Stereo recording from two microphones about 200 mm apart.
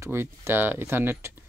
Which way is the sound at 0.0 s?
10° right (ahead or behind).